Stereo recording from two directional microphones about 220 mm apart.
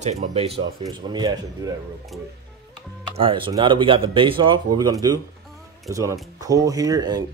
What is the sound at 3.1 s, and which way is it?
Speech, 25° right (ahead or behind).